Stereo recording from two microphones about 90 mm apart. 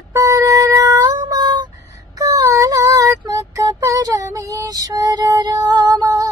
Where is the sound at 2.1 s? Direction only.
40° right (ahead or behind).